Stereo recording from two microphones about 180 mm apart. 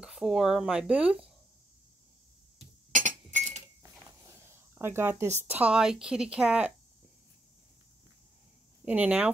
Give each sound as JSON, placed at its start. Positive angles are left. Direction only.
{"t": 0.0, "sound": "speech", "side_deg": -5}
{"t": 2.9, "sound": "chink", "side_deg": -45}
{"t": 4.5, "sound": "a sound", "side_deg": -15}
{"t": 5.5, "sound": "speech", "side_deg": -5}
{"t": 8.8, "sound": "speech", "side_deg": -10}